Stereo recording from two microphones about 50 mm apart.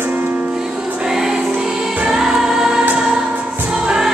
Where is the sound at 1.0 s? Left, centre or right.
Centre.